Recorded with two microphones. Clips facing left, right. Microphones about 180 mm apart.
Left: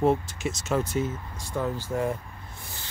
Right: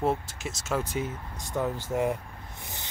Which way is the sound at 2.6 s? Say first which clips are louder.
Right 2 dB; 20° right (ahead or behind).